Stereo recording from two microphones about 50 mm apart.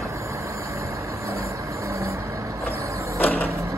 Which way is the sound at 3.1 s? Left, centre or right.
Left.